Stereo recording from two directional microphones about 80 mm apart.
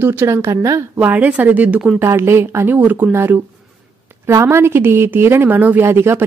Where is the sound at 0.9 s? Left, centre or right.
Right.